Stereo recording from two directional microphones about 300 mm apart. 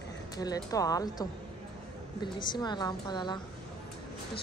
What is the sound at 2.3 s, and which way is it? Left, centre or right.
Speech, centre.